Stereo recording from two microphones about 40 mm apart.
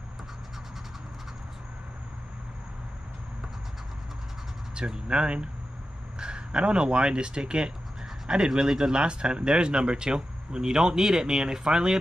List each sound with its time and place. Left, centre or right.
4.7 s speech: right